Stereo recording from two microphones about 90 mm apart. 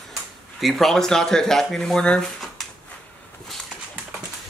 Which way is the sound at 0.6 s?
Centre (ahead or behind).